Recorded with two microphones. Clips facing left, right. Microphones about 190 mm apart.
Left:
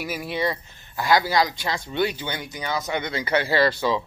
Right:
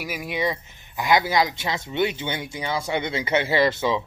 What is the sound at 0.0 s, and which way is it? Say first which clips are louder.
Speech: even; 10° right (ahead or behind).